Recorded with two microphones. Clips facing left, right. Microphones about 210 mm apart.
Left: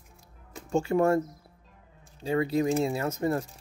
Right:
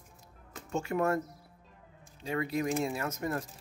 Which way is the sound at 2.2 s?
30° left (ahead or behind).